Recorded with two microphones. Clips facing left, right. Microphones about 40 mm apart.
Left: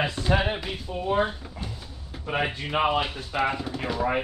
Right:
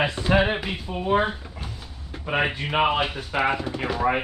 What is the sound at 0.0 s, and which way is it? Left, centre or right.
Speech, centre.